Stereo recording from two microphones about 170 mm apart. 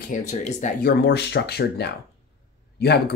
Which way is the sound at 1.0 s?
80° left.